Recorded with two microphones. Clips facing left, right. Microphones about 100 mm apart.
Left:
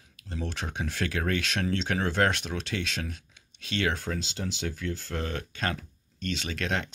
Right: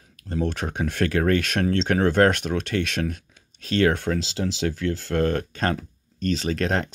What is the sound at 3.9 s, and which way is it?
Speech, 75° right (ahead or behind).